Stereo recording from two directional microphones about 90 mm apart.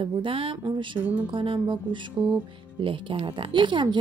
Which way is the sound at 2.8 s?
75° right (ahead or behind).